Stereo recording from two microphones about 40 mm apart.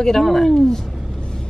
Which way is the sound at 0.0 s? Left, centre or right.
Centre.